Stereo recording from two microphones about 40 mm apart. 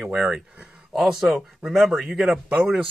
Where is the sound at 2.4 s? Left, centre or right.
Right.